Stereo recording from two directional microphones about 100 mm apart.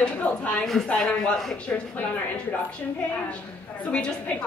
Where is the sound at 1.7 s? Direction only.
20° left (ahead or behind).